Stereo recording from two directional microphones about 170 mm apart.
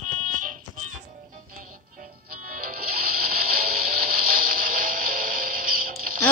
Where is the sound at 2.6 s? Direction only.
60° right (ahead or behind).